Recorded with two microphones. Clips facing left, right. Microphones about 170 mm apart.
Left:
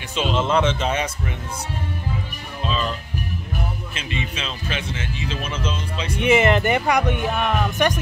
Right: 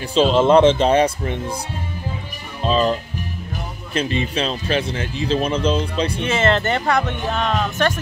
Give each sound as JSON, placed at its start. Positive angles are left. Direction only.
{"t": 0.1, "sound": "speech", "side_deg": -35}
{"t": 2.6, "sound": "speech", "side_deg": -35}
{"t": 6.1, "sound": "speech", "side_deg": 15}